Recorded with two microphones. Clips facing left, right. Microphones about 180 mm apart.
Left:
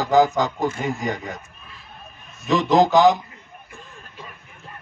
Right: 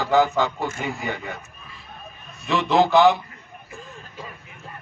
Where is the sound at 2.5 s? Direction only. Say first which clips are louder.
Left 2 dB; 40° left (ahead or behind).